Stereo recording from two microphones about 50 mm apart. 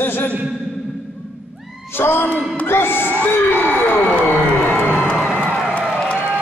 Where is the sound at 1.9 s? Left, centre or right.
Left.